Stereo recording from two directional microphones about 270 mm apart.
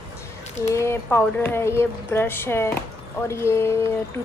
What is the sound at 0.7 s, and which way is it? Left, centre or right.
A woman's voice, centre.